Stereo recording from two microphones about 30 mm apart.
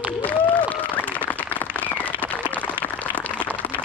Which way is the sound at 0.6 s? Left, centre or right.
Left.